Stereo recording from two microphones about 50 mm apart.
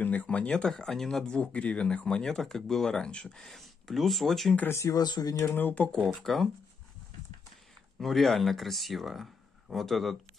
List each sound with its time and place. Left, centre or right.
0.0 s speech: left
0.7 s speech: centre
1.2 s speech: left
3.3 s speech: centre
4.6 s speech: left
5.2 s speech: left
5.5 s speech: left
6.0 s speech: centre
8.0 s speech: centre